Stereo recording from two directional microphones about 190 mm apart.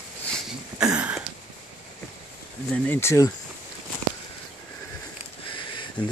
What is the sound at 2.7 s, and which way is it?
Speech, 10° left (ahead or behind).